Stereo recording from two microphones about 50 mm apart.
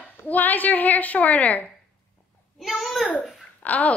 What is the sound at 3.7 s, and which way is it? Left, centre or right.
Speech, left.